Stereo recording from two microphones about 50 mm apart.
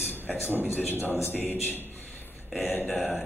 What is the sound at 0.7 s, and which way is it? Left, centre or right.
A man's voice, left.